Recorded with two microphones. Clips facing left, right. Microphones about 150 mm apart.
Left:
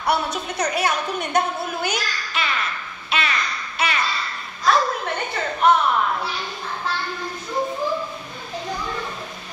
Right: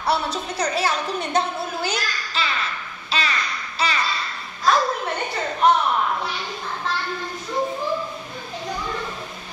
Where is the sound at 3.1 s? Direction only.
30° right (ahead or behind).